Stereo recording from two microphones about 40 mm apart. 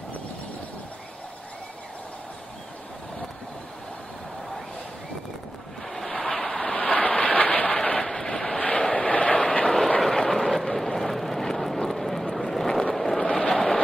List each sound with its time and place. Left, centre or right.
5.9 s vehicle: centre; by 7.7 s left
7.7 s vehicle: left
8.1 s vehicle: centre
8.5 s vehicle: left
9.9 s vehicle: centre
13.2 s a sound: left